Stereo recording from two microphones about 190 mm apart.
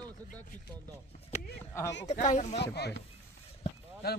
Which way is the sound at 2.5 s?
60° left (ahead or behind).